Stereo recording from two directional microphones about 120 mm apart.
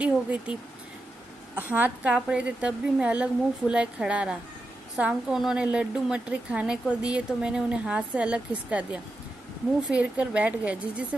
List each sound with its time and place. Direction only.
0.0 s a woman's voice: 10° right (ahead or behind)
1.7 s a woman's voice: 10° right (ahead or behind)